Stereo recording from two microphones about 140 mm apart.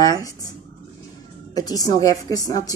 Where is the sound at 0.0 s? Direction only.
25° left (ahead or behind).